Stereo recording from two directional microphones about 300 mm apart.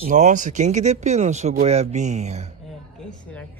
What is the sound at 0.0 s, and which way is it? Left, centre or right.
Speech, right.